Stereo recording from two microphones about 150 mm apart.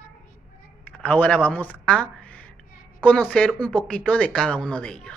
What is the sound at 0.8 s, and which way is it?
Speech, 10° left (ahead or behind).